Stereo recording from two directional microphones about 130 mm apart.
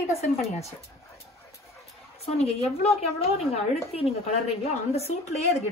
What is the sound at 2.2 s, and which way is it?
A woman's voice, 50° left (ahead or behind).